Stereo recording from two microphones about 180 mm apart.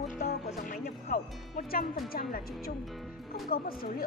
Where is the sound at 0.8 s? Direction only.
55° left (ahead or behind).